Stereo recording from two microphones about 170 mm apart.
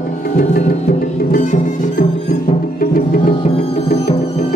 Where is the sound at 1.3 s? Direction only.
50° left (ahead or behind).